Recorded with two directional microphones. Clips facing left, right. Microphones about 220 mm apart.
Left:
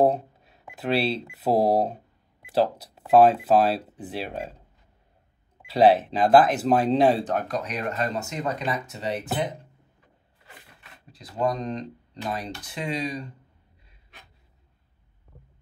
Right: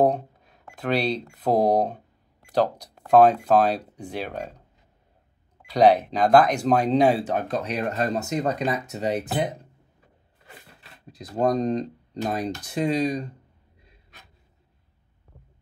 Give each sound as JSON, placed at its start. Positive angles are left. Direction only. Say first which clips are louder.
{"t": 0.0, "sound": "cash register", "louder": "even", "side_deg": 5}
{"t": 1.3, "sound": "speech", "louder": "right 1 dB", "side_deg": 5}
{"t": 5.7, "sound": "speech", "louder": "even", "side_deg": 5}
{"t": 7.3, "sound": "speech", "louder": "right 2 dB", "side_deg": -25}
{"t": 10.8, "sound": "speech", "louder": "right 6 dB", "side_deg": -40}